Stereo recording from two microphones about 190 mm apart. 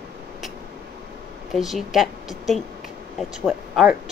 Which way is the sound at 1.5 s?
Centre (ahead or behind).